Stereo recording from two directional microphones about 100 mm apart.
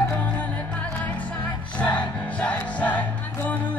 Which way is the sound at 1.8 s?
10° left (ahead or behind).